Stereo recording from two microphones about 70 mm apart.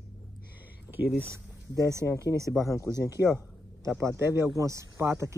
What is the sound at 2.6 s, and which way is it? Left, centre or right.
Speech, left.